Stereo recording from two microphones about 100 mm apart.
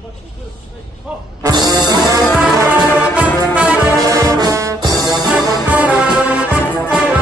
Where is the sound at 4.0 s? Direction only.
35° right (ahead or behind).